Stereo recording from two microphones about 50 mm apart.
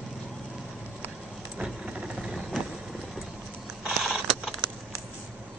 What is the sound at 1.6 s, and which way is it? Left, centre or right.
Vehicle, right.